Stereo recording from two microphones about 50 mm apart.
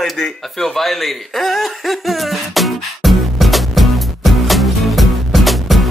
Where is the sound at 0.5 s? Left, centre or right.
Centre.